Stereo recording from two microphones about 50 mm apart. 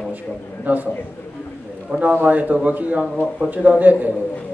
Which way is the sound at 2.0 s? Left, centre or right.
Right.